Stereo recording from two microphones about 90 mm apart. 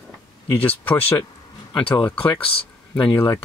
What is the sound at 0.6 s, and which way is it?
Speech, 20° left (ahead or behind).